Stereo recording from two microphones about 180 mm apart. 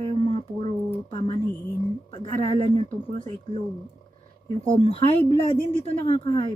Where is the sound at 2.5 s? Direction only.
40° right (ahead or behind).